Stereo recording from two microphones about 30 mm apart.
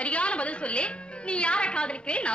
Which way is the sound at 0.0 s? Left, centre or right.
Left.